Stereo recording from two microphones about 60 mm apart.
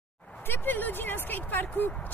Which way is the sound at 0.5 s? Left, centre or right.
Left.